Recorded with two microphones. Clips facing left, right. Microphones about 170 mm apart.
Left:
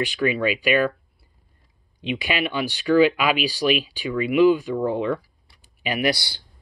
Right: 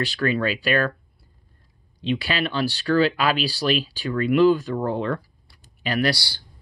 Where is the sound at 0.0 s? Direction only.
15° left (ahead or behind).